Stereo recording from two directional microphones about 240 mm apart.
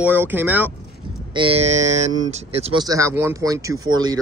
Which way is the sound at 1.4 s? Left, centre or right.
Right.